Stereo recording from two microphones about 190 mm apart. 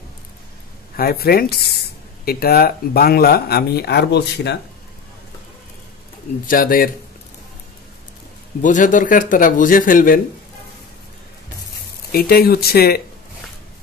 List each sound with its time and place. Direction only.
0.9 s speech: 55° left (ahead or behind)
6.4 s speech: 45° left (ahead or behind)
8.6 s speech: 45° left (ahead or behind)
12.1 s speech: 55° left (ahead or behind)